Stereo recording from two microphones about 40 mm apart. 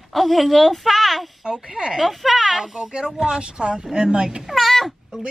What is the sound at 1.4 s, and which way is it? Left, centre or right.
Speech, centre.